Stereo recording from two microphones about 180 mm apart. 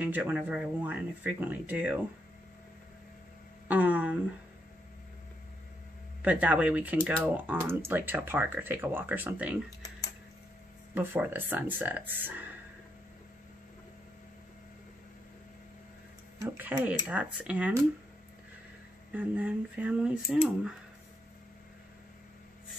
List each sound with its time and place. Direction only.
0.0 s speech: 10° right (ahead or behind)
3.6 s a sound: 10° right (ahead or behind)
6.2 s speech: 10° right (ahead or behind)
11.0 s speech: 10° right (ahead or behind)
16.4 s speech: 10° right (ahead or behind)
19.1 s speech: 10° right (ahead or behind)